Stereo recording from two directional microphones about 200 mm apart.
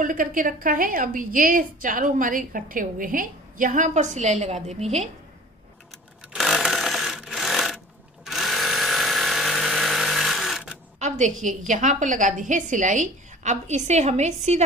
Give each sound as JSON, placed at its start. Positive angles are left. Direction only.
{"t": 0.0, "sound": "a woman's voice", "side_deg": -45}
{"t": 6.3, "sound": "sewing machine", "side_deg": 0}
{"t": 8.3, "sound": "tools", "side_deg": 0}
{"t": 11.0, "sound": "a sound", "side_deg": -35}
{"t": 11.4, "sound": "a woman's voice", "side_deg": -40}